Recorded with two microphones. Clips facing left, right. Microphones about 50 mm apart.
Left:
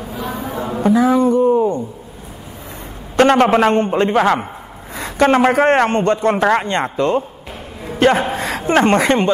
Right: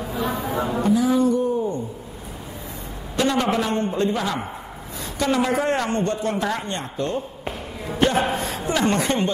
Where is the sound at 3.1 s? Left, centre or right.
Left.